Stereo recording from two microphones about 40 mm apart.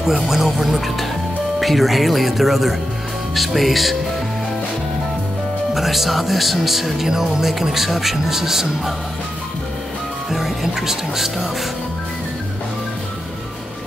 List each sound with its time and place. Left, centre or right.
0.0 s speech: centre
5.8 s speech: centre
10.3 s speech: centre